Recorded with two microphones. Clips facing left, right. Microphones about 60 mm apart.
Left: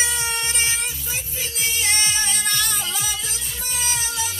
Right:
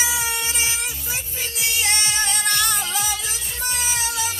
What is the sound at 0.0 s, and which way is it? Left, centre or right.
Music, centre.